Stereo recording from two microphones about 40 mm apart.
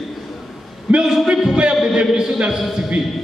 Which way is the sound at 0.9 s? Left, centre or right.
Right.